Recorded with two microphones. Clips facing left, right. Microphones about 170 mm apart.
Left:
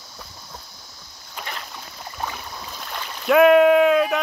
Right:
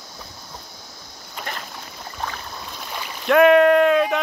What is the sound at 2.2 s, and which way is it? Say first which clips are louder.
Boat: even; 5° left (ahead or behind).